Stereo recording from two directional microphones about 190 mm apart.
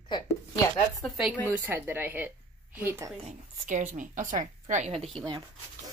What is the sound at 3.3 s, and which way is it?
A woman's voice, 40° right (ahead or behind).